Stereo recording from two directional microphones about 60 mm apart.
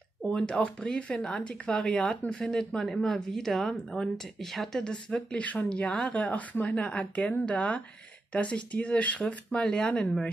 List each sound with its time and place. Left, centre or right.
0.3 s speech: centre
4.8 s speech: centre